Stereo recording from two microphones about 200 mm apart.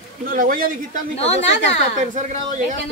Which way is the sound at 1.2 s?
30° left (ahead or behind).